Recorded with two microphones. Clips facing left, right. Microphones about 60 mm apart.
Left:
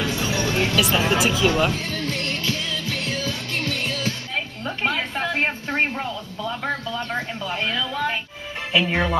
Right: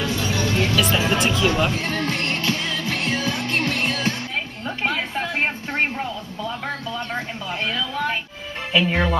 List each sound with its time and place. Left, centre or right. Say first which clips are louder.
0.0 s music: even; centre
1.0 s speech: even; centre
1.7 s music: right 3 dB; right
4.6 s a sound: even; centre
5.9 s speech: right 1 dB; centre